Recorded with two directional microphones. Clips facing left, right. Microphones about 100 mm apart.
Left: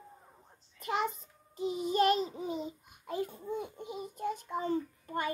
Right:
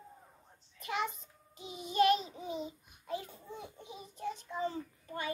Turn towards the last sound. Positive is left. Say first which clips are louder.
# left 5 dB
turn(degrees=50)  # may be behind; listen again after turning